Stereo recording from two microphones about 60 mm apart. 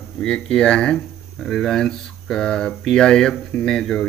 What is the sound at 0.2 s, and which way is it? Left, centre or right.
Speech, centre.